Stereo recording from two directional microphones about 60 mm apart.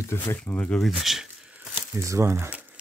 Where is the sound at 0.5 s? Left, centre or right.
Left.